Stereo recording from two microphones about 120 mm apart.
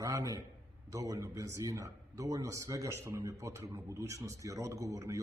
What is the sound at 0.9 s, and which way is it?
A man's voice, 25° right (ahead or behind).